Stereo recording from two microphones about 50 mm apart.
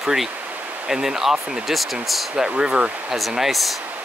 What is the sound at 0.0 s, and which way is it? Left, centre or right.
Speech, centre.